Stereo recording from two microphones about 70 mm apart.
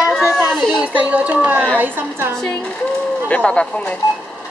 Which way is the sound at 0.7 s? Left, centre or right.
Right.